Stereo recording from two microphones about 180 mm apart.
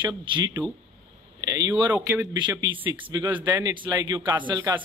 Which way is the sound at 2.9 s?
25° right (ahead or behind).